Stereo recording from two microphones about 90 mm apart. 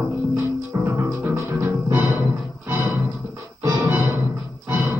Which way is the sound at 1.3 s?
25° right (ahead or behind).